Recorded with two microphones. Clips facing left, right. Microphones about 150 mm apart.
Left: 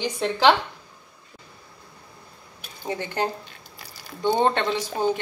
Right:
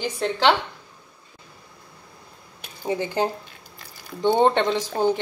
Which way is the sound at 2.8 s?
10° right (ahead or behind).